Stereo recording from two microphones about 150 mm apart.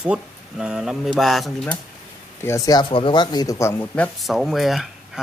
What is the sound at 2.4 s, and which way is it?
Speech, 20° left (ahead or behind).